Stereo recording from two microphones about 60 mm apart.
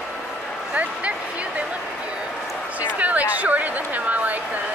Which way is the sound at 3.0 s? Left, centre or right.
Right.